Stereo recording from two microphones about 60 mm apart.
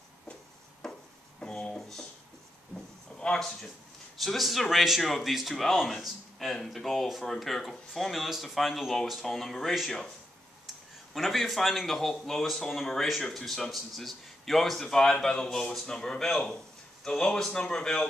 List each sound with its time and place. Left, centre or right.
0.8 s wood: centre
1.4 s a sound: centre
3.2 s a man's voice: centre
11.1 s a man's voice: centre